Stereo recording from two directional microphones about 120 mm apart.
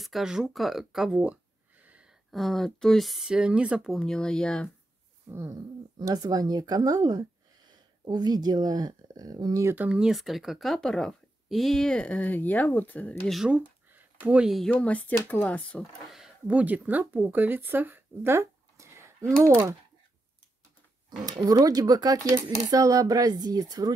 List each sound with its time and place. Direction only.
0.0 s speech: 5° right (ahead or behind)
2.3 s speech: centre (ahead or behind)
4.0 s speech: 5° left (ahead or behind)
5.5 s speech: 35° right (ahead or behind)
9.8 s speech: 5° right (ahead or behind); by 13.1 s 15° left (ahead or behind)
13.5 s speech: 15° right (ahead or behind)
14.7 s speech: 10° left (ahead or behind)
16.4 s speech: 15° right (ahead or behind)
21.3 s speech: 30° right (ahead or behind)